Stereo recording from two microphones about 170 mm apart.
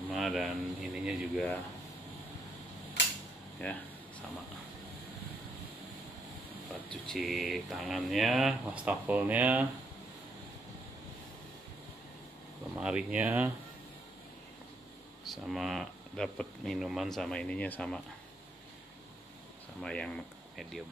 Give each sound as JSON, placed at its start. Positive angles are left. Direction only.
{"t": 0.1, "sound": "a sound", "side_deg": 0}
{"t": 0.9, "sound": "speech", "side_deg": -5}
{"t": 3.0, "sound": "cap gun", "side_deg": 90}
{"t": 3.6, "sound": "speech", "side_deg": 5}
{"t": 6.9, "sound": "speech", "side_deg": 0}
{"t": 12.7, "sound": "speech", "side_deg": -5}
{"t": 15.2, "sound": "speech", "side_deg": 0}
{"t": 19.8, "sound": "speech", "side_deg": 5}